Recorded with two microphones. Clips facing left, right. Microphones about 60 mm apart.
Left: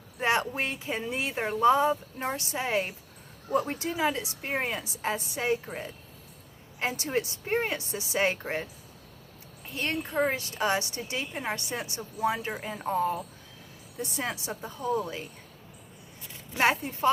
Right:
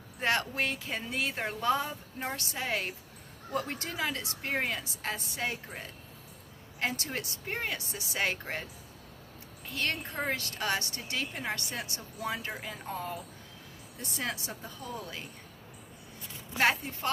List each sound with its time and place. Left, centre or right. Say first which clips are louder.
0.2 s a woman's voice: left 3 dB; centre
6.8 s a woman's voice: left 5 dB; left
9.7 s a woman's voice: left 2 dB; left
14.0 s a woman's voice: left 3 dB; left
16.5 s a woman's voice: left 2 dB; left